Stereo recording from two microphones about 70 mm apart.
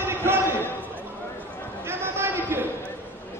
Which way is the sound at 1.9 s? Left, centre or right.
Right.